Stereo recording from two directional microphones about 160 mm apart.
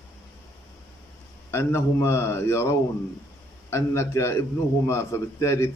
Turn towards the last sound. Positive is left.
turn(degrees=15)  # may be behind; listen again after turning